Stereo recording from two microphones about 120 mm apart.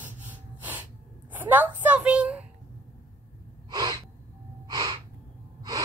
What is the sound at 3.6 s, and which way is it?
Gasp, 35° right (ahead or behind).